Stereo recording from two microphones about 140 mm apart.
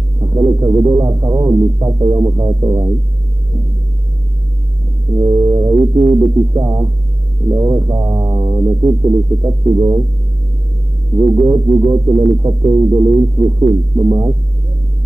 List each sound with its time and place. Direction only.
0.2 s speech: 30° right (ahead or behind)
5.1 s speech: 30° right (ahead or behind)
11.1 s speech: 25° right (ahead or behind)